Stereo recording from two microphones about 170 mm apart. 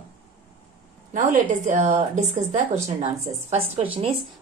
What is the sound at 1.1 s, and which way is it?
A woman's voice, 50° right (ahead or behind).